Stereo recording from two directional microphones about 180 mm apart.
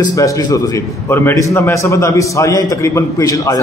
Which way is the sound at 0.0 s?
20° left (ahead or behind).